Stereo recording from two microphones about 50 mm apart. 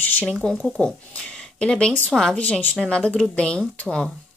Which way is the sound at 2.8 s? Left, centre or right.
Left.